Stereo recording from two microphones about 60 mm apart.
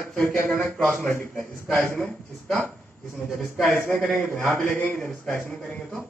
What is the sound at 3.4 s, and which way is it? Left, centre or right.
Speech, centre.